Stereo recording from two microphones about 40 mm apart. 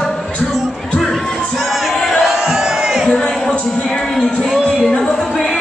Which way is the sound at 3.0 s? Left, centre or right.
Centre.